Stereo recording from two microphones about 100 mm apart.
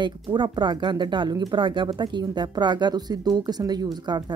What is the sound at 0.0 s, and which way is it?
Speech, 50° right (ahead or behind).